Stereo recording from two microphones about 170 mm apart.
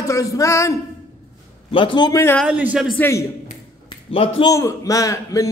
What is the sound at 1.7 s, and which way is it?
Speech, 30° left (ahead or behind).